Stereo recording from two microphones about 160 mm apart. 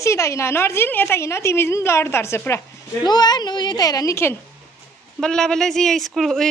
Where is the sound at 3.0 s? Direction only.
25° left (ahead or behind).